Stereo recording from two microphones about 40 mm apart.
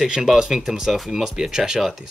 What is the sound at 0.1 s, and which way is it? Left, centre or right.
Speech, centre.